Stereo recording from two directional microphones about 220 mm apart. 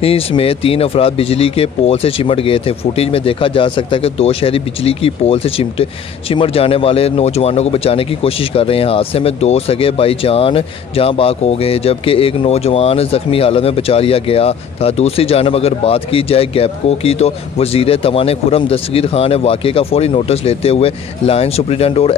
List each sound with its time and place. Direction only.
0.0 s speech: 25° left (ahead or behind)